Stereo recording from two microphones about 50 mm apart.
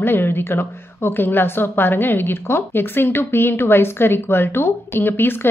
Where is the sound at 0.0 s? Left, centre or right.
Left.